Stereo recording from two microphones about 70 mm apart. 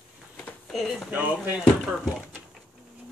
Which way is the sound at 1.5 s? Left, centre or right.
Centre.